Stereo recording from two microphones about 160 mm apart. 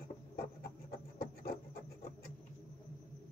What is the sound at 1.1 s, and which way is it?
Music, 70° left (ahead or behind).